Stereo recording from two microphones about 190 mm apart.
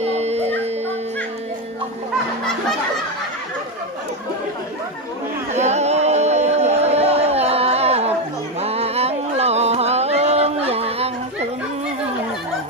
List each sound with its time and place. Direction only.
0.0 s dog: 35° right (ahead or behind)
5.5 s music: 35° right (ahead or behind)
8.5 s a sound: 30° right (ahead or behind)